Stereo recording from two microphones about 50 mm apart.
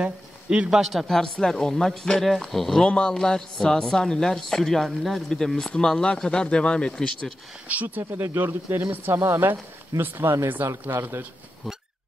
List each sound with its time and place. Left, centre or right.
0.0 s a sound: right
0.7 s a man's voice: centre
1.0 s speech: centre
2.8 s speech: centre
5.8 s speech: centre
7.6 s speech: right
8.2 s speech: right
9.2 s speech: right
9.5 s speech: right